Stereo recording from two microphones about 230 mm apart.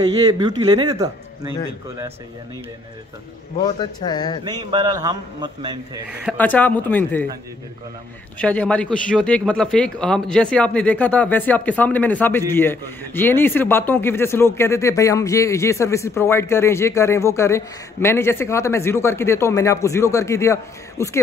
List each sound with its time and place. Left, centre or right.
0.3 s a man's voice: centre
4.0 s a man's voice: centre
4.5 s a man's voice: centre
6.0 s speech: centre
6.3 s a man's voice: centre
8.4 s a man's voice: centre